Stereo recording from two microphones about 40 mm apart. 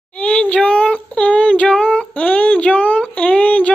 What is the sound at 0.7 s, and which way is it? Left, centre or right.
Child singing, left.